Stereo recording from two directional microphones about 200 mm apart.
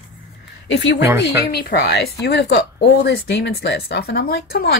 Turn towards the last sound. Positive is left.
turn(degrees=50)  # may be behind; listen again after turning